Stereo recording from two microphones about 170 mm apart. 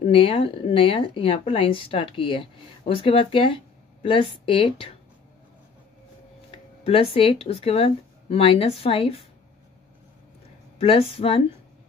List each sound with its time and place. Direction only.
0.1 s speech: 35° left (ahead or behind)
6.8 s speech: 35° left (ahead or behind)
10.8 s speech: 35° left (ahead or behind)